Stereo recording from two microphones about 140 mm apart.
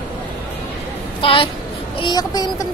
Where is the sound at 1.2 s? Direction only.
40° left (ahead or behind).